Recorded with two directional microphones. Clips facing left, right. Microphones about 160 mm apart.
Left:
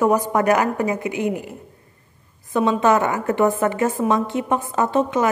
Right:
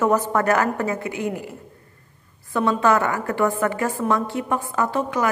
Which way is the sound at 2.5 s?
20° left (ahead or behind).